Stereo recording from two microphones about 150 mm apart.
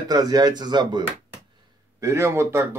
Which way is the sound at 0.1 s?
25° right (ahead or behind).